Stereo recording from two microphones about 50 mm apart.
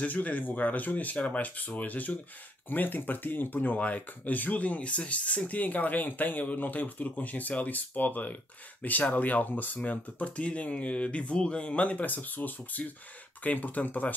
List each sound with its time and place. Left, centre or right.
0.0 s speech: left